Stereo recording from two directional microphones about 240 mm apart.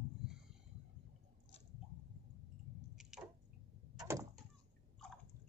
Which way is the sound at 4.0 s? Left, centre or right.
Centre.